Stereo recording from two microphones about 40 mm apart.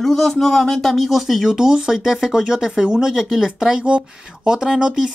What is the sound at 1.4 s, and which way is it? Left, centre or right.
Speech, centre.